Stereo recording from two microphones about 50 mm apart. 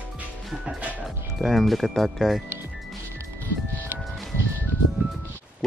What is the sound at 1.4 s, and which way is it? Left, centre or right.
Speech, centre.